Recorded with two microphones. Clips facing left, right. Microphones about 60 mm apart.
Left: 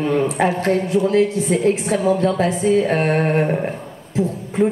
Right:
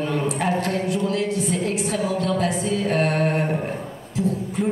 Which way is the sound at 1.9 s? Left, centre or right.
Left.